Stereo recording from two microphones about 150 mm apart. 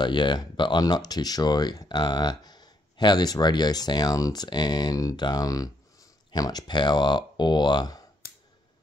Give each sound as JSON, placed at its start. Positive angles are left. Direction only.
{"t": 0.0, "sound": "speech", "side_deg": 30}